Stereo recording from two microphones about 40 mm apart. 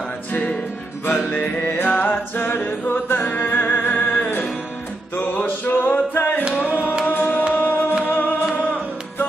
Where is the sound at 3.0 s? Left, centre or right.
Left.